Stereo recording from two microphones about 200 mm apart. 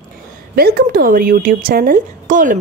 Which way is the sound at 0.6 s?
50° right (ahead or behind).